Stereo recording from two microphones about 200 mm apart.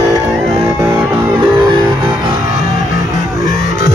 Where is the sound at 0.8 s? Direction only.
10° right (ahead or behind).